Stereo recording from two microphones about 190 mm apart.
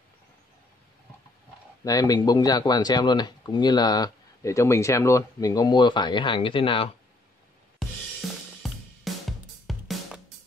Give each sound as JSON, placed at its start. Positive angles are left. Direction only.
{"t": 1.9, "sound": "speech", "side_deg": 20}
{"t": 7.8, "sound": "drum kit", "side_deg": 0}
{"t": 8.2, "sound": "cymbal", "side_deg": 0}
{"t": 8.6, "sound": "music", "side_deg": 0}